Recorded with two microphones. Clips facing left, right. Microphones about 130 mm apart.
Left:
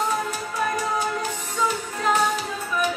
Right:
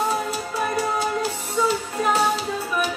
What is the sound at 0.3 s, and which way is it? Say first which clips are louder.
Music: right 1 dB; 30° right (ahead or behind).